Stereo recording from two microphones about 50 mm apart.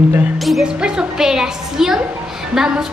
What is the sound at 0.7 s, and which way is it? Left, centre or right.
A woman's voice, centre.